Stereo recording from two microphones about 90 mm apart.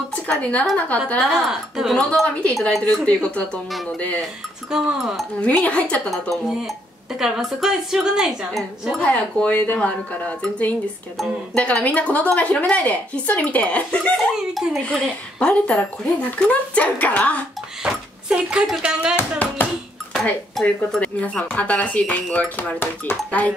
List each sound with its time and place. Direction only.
0.3 s speech: 15° left (ahead or behind)
1.3 s a woman's voice: 5° right (ahead or behind)
2.9 s a woman's voice: 10° left (ahead or behind)
4.6 s a woman's voice: 5° right (ahead or behind)
5.4 s speech: 15° left (ahead or behind)
6.0 s a woman's voice: centre (ahead or behind)
8.9 s speech: 15° left (ahead or behind)
14.5 s speech: centre (ahead or behind); by 17.5 s 15° left (ahead or behind)
17.8 s speech: 10° right (ahead or behind)
19.1 s a sound: 20° left (ahead or behind)
20.1 s speech: centre (ahead or behind)
20.6 s speech: 15° left (ahead or behind)